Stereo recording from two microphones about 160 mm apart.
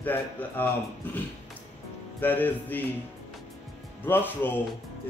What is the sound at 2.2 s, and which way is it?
Speech, 10° left (ahead or behind).